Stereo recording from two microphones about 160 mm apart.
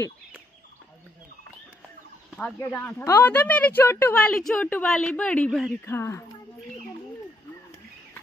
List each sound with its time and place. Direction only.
2.3 s a woman's voice: 10° left (ahead or behind)
5.9 s a woman's voice: 15° left (ahead or behind)